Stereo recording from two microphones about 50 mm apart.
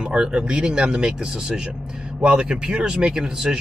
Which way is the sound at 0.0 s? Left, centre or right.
Centre.